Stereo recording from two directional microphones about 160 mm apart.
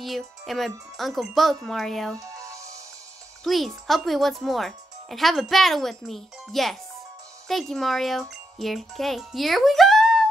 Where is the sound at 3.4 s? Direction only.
Centre (ahead or behind).